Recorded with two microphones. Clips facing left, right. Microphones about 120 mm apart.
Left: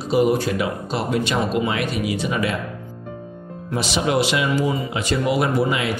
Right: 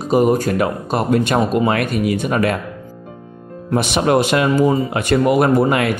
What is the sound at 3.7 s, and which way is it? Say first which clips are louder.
Speech: right 6 dB; 55° right (ahead or behind).